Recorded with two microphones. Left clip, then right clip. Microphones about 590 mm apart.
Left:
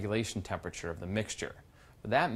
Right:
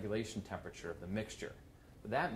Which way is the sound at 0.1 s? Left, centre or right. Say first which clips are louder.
Left 7 dB; left.